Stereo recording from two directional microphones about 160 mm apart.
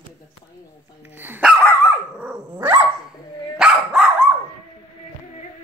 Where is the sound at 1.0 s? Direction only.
10° right (ahead or behind).